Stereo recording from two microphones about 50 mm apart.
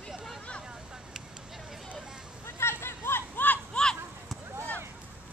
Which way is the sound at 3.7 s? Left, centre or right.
Centre.